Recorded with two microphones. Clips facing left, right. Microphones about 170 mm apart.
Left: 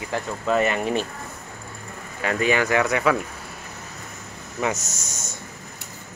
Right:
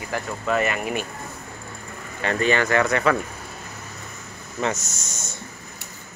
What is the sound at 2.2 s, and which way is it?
Speech, 10° left (ahead or behind).